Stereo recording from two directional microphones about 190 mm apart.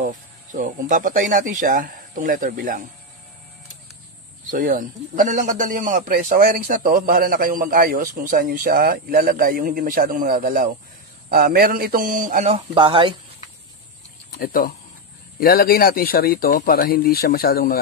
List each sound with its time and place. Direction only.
0.0 s a man's voice: 45° right (ahead or behind)
4.5 s a man's voice: 45° right (ahead or behind)
12.5 s speech: 25° right (ahead or behind)
14.3 s speech: 50° left (ahead or behind)